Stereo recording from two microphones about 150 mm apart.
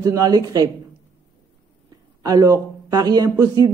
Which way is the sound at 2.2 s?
25° right (ahead or behind).